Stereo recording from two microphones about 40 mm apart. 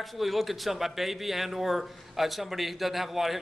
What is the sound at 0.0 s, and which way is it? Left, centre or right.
Speech, centre.